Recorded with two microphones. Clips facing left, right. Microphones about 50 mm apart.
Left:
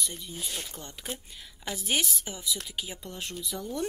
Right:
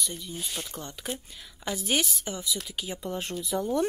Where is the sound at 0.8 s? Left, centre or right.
Centre.